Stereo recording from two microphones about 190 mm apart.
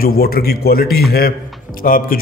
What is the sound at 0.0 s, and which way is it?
Speech, 50° left (ahead or behind).